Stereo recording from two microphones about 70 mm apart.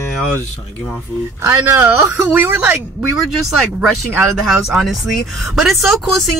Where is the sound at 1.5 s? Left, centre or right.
Right.